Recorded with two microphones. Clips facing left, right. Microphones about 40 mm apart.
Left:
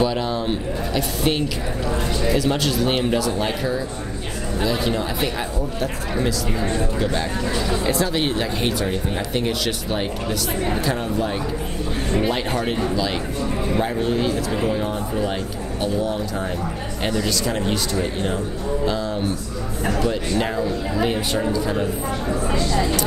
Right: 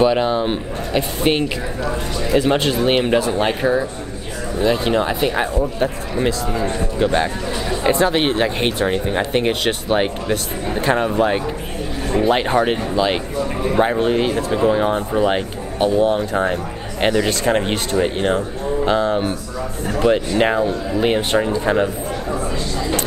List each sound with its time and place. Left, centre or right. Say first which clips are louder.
0.0 s speech: right 6 dB; right